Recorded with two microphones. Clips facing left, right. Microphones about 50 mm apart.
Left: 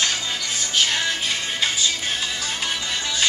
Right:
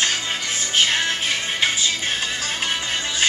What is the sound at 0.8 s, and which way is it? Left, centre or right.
Music, right.